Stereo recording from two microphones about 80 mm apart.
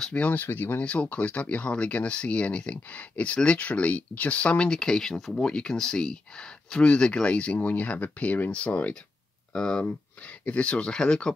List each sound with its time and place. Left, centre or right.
0.0 s speech: centre